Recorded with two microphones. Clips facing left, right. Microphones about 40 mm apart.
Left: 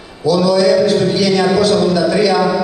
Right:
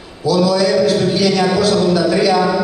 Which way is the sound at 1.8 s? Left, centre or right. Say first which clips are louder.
Left 1 dB; centre.